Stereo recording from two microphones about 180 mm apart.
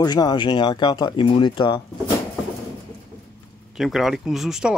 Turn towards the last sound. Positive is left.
turn(degrees=-5)  # may be behind; listen again after turning